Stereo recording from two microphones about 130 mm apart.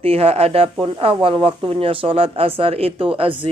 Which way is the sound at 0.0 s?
50° right (ahead or behind).